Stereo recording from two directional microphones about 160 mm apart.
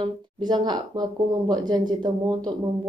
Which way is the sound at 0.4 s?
25° right (ahead or behind).